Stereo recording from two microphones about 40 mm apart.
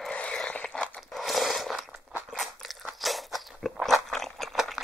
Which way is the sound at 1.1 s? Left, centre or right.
Centre.